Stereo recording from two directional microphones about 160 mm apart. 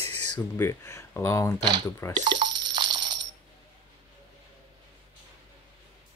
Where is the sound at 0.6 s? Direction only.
15° left (ahead or behind).